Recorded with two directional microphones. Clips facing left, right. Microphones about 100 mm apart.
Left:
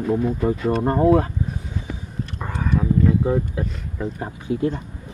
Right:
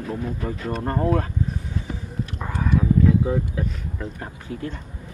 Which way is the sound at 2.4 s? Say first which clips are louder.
Even; centre (ahead or behind).